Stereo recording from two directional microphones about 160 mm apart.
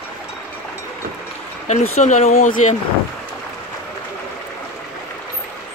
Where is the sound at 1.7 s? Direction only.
45° left (ahead or behind).